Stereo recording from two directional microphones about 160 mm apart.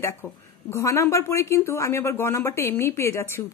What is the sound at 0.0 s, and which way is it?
Speech, 15° left (ahead or behind).